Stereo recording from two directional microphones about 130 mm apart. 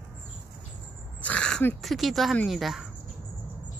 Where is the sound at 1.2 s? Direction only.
10° left (ahead or behind).